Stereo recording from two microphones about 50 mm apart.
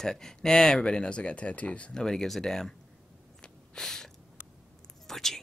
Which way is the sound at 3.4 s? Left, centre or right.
Centre.